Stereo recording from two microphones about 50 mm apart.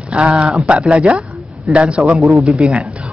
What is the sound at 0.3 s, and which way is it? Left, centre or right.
A man's voice, centre.